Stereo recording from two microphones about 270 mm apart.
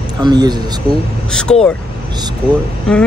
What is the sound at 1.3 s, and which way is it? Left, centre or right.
Speech, centre.